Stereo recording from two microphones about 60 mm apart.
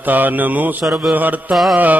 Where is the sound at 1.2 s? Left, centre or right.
Right.